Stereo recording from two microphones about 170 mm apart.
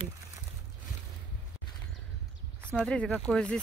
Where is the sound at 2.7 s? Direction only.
5° left (ahead or behind).